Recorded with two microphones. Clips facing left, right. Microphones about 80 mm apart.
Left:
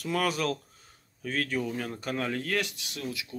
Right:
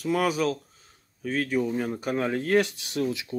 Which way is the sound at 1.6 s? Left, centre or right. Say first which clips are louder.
Right 6 dB; centre.